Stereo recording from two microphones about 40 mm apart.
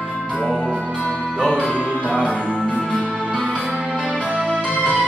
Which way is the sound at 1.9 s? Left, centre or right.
Left.